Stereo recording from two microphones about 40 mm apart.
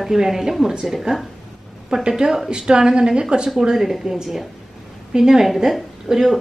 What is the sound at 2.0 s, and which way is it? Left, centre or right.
Speech, centre.